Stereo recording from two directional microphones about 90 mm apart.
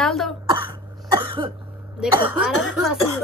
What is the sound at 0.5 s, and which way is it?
Cough, 55° right (ahead or behind).